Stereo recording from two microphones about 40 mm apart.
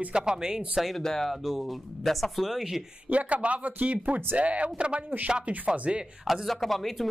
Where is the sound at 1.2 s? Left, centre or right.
Centre.